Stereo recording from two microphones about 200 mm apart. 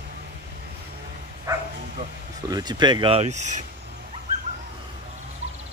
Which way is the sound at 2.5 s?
20° right (ahead or behind).